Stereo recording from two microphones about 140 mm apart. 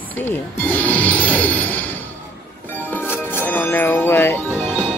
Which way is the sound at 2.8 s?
15° left (ahead or behind).